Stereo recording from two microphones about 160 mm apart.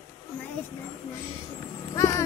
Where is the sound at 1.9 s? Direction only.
20° left (ahead or behind).